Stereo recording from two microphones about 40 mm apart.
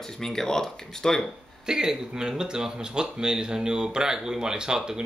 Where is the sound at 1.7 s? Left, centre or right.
Centre.